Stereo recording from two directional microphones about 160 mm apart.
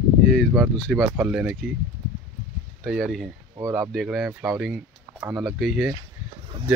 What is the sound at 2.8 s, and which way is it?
Speech, centre (ahead or behind).